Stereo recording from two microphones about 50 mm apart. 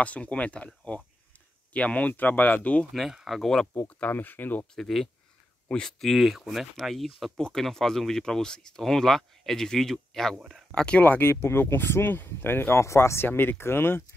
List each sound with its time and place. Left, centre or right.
0.0 s speech: left
2.9 s speech: centre
4.1 s speech: left
4.7 s speech: centre
7.3 s speech: centre
10.7 s speech: left
11.0 s speech: left
12.8 s speech: left
13.2 s speech: left